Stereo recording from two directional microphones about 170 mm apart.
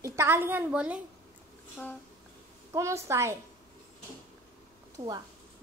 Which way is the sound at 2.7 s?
15° right (ahead or behind).